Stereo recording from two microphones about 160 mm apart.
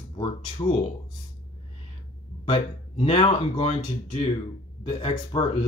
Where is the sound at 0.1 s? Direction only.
35° left (ahead or behind).